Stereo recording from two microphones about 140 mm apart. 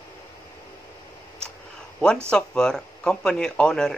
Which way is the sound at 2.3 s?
5° left (ahead or behind).